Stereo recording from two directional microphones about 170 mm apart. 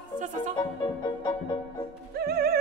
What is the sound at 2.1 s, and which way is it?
Music, 65° right (ahead or behind).